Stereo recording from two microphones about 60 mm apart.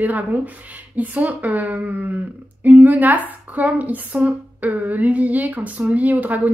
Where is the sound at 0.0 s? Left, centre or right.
Right.